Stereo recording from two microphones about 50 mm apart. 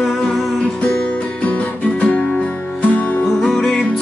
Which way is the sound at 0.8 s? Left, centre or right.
Left.